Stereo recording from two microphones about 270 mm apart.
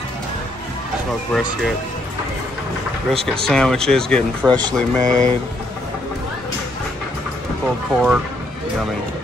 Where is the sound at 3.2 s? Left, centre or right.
Centre.